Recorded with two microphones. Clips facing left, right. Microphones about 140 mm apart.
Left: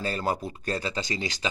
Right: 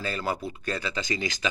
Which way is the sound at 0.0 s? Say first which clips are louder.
Left 2 dB; 40° left (ahead or behind).